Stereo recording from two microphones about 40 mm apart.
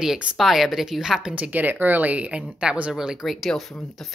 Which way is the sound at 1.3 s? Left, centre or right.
Right.